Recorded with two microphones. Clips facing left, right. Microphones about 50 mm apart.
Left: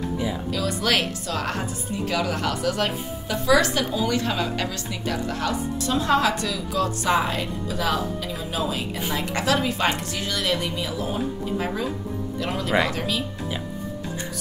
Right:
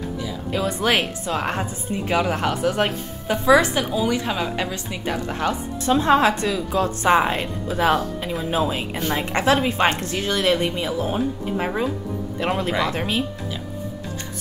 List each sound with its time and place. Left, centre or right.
0.5 s a woman's voice: right